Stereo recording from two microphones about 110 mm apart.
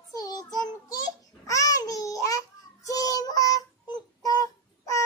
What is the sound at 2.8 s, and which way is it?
Child singing, 30° left (ahead or behind).